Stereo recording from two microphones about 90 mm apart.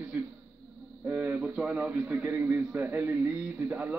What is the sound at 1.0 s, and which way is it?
A man's voice, 20° right (ahead or behind).